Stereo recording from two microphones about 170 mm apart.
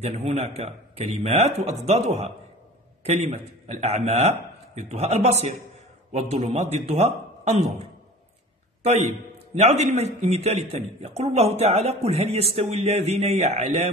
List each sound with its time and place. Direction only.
0.0 s a man's voice: 35° right (ahead or behind)